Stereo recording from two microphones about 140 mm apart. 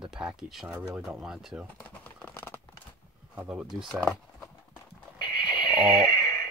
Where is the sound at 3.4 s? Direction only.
10° right (ahead or behind).